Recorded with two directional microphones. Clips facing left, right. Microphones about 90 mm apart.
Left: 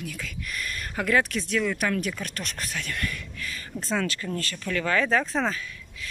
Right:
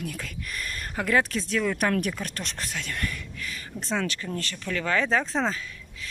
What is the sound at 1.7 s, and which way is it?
Speech, 50° right (ahead or behind).